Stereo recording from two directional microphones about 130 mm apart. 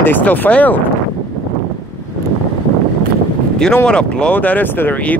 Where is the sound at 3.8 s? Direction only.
5° left (ahead or behind).